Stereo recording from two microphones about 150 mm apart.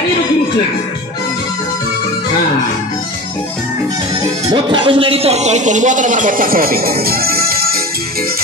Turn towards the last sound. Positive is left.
turn(degrees=-90)